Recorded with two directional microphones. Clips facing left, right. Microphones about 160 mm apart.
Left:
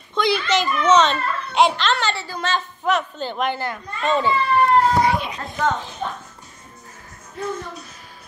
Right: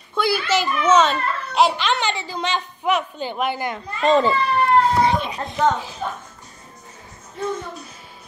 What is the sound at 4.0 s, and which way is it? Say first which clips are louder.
Speech: right 4 dB; 40° right (ahead or behind).